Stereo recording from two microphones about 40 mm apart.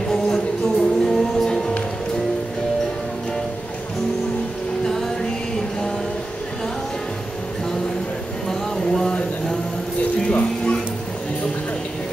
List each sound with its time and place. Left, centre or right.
0.7 s music: centre
8.5 s a sound: centre
10.2 s music: left